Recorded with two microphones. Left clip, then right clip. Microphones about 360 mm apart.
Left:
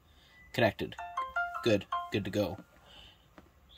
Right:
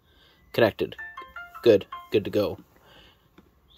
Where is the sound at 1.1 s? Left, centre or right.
Centre.